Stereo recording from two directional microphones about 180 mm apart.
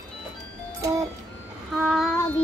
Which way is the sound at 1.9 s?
Centre (ahead or behind).